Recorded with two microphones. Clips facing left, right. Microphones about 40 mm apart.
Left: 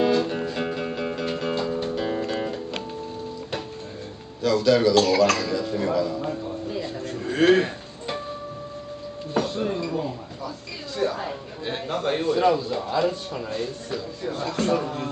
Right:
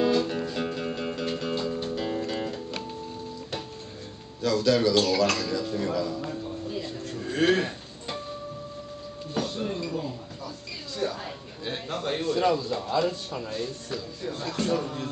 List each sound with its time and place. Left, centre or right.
0.0 s music: centre
4.6 s speech: centre
5.4 s music: centre
9.4 s chink: centre
11.0 s a man's voice: centre